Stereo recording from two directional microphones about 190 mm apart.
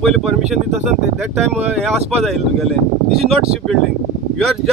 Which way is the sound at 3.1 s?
30° right (ahead or behind).